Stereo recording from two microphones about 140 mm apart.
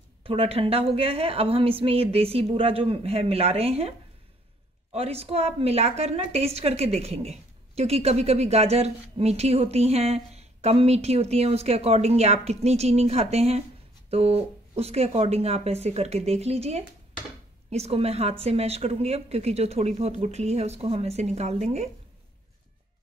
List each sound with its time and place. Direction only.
0.2 s a woman's voice: 40° right (ahead or behind)
4.9 s a woman's voice: 45° right (ahead or behind)